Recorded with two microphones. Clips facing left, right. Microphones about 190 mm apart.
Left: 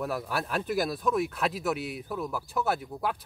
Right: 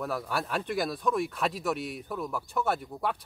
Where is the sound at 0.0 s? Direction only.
5° left (ahead or behind).